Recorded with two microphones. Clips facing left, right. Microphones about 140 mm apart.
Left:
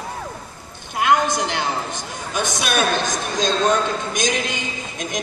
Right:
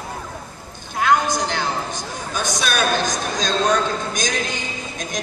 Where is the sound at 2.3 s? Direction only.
25° left (ahead or behind).